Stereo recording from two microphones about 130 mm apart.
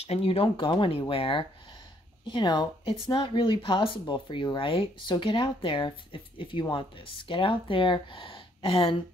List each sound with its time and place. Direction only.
0.0 s speech: 50° left (ahead or behind)